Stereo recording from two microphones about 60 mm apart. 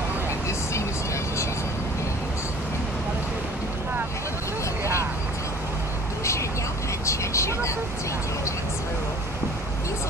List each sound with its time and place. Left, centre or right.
7.1 s vehicle: left